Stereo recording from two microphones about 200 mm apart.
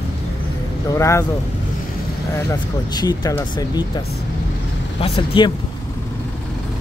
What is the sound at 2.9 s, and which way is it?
Speech, 20° left (ahead or behind).